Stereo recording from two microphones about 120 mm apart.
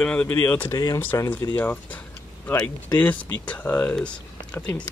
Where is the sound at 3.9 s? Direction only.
10° left (ahead or behind).